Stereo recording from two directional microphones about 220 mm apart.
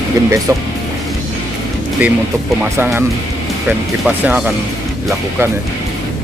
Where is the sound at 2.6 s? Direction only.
10° right (ahead or behind).